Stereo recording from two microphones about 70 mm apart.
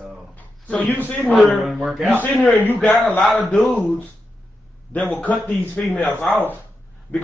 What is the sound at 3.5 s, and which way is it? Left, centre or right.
Speech, left.